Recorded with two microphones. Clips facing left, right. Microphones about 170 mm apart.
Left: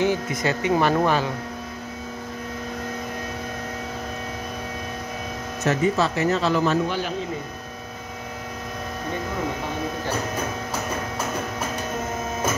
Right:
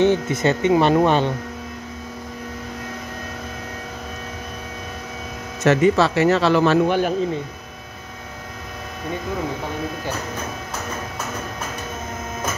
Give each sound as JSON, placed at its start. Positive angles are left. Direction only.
{"t": 0.0, "sound": "speech", "side_deg": -25}
{"t": 5.6, "sound": "a man's voice", "side_deg": -85}